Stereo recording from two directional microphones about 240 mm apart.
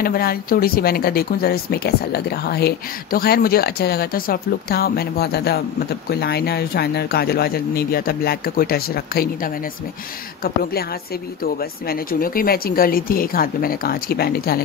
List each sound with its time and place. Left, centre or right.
0.0 s speech: left